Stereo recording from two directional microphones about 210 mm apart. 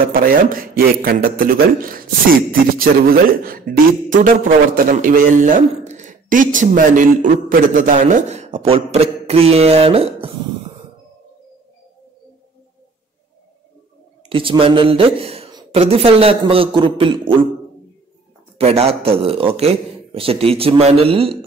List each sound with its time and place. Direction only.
0.1 s a man's voice: 45° right (ahead or behind); by 10.3 s 25° right (ahead or behind)
14.3 s a woman's voice: 25° right (ahead or behind)
18.6 s a woman's voice: 30° right (ahead or behind)